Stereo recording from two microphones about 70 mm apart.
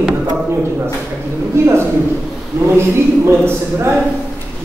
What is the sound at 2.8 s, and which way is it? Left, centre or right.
Speech, right.